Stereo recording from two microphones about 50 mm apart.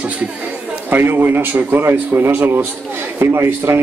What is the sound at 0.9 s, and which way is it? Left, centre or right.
Speech, right.